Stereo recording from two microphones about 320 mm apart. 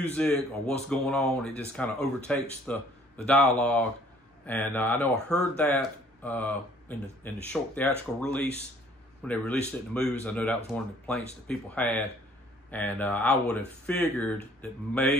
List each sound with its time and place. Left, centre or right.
0.0 s speech: centre
4.5 s speech: centre